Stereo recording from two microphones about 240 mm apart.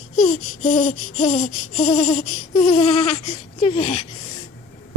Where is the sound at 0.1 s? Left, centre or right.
Left.